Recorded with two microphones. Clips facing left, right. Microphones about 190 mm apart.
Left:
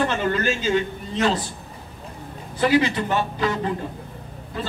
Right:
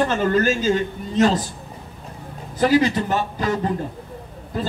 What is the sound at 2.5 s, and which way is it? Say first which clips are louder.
Speech: right 2 dB; 40° right (ahead or behind).